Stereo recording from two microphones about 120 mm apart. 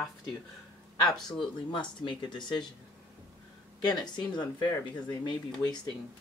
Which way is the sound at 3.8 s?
35° left (ahead or behind).